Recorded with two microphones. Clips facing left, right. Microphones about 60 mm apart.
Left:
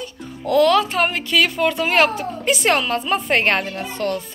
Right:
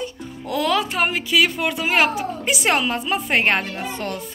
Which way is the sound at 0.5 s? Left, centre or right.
Centre.